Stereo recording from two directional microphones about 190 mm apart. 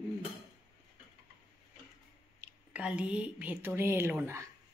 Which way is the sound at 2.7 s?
5° right (ahead or behind).